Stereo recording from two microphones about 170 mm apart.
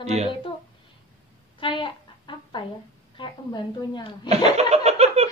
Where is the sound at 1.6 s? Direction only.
30° left (ahead or behind).